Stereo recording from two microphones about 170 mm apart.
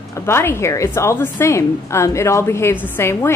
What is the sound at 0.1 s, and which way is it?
A woman's voice, 15° left (ahead or behind).